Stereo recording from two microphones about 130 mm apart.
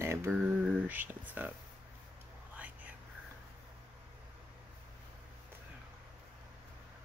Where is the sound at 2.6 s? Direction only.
10° right (ahead or behind).